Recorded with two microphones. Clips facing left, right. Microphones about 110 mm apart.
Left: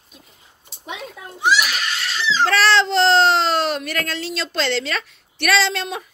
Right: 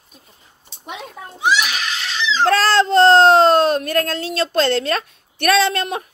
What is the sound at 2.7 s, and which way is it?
Speech, 45° right (ahead or behind).